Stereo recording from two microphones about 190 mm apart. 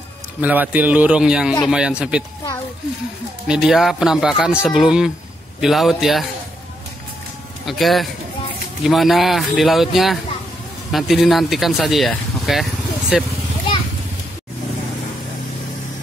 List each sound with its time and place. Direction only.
0.4 s a man's voice: 10° right (ahead or behind)
3.4 s speech: centre (ahead or behind)
7.6 s speech: centre (ahead or behind)